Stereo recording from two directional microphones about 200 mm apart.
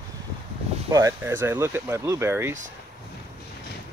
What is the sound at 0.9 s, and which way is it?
Speech, 15° right (ahead or behind).